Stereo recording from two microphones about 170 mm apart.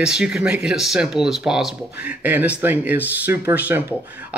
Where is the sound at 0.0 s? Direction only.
5° right (ahead or behind).